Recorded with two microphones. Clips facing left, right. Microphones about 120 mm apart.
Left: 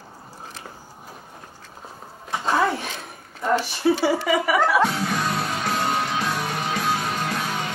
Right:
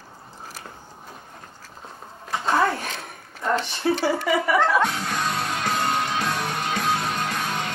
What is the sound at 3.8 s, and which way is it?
Speech, 20° left (ahead or behind).